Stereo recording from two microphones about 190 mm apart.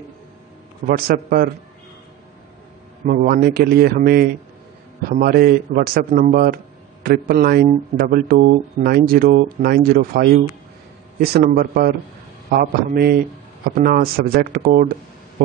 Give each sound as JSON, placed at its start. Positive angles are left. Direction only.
{"t": 0.8, "sound": "speech", "side_deg": -50}
{"t": 3.1, "sound": "a man's voice", "side_deg": -50}